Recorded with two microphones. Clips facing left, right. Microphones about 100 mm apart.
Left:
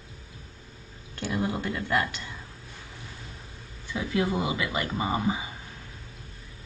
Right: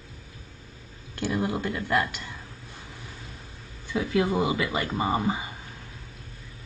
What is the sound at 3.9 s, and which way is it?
A woman's voice, 20° right (ahead or behind).